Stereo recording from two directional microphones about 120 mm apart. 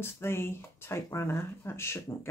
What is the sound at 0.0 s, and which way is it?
Speech, 20° left (ahead or behind).